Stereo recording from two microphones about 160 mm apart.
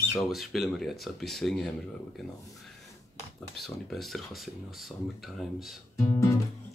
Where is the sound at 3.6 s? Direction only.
Centre (ahead or behind).